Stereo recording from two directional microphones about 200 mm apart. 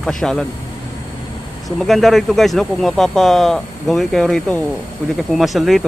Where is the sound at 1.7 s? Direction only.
Centre (ahead or behind).